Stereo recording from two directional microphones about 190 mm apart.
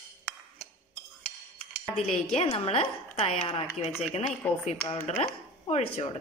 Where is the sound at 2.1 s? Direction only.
35° left (ahead or behind).